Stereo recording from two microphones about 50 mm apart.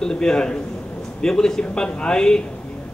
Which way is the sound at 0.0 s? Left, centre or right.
Centre.